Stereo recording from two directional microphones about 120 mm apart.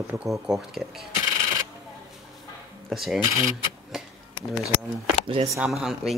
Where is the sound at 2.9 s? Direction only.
Centre (ahead or behind).